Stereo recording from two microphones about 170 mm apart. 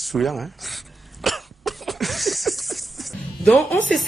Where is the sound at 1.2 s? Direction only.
Centre (ahead or behind).